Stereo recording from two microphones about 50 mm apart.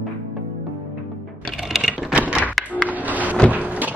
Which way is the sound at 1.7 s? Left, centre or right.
Centre.